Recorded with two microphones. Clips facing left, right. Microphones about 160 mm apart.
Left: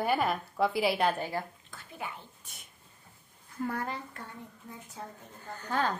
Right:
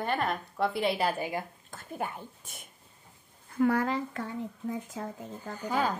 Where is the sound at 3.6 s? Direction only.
90° right.